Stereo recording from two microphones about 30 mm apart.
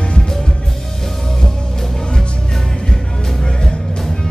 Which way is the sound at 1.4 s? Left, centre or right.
Centre.